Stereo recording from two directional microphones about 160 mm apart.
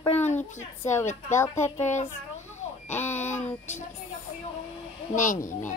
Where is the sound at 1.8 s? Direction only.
45° left (ahead or behind).